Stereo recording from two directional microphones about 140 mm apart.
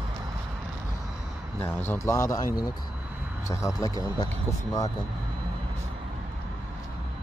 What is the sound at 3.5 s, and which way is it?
Speech, 25° left (ahead or behind).